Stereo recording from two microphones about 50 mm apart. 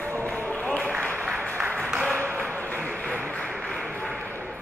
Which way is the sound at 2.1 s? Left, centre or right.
Right.